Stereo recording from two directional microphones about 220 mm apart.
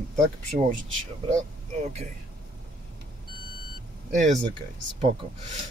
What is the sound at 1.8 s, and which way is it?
Speech, 30° right (ahead or behind).